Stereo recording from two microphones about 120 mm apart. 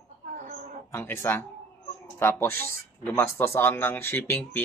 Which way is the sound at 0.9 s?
20° left (ahead or behind).